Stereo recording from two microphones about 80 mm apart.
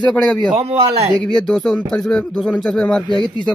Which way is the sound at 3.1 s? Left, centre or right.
Left.